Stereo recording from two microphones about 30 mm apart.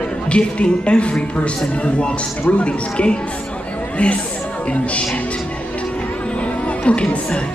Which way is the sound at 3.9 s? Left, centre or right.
Left.